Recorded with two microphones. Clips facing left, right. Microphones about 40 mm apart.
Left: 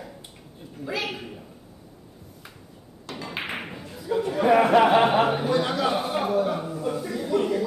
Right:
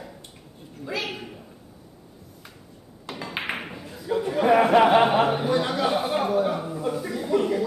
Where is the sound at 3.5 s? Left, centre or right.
Centre.